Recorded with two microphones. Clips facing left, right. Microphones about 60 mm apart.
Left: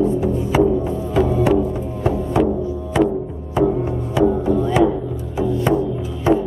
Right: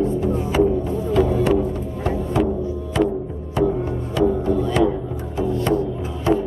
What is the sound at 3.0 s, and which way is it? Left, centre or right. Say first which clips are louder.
Music: left 3 dB; centre.